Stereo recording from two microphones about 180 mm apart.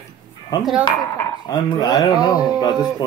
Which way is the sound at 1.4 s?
20° left (ahead or behind).